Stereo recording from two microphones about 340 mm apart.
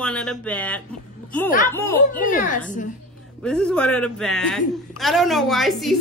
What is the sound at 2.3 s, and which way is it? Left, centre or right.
Speech, left.